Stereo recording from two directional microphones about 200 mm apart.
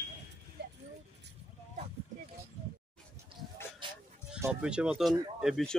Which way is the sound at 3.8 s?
25° right (ahead or behind).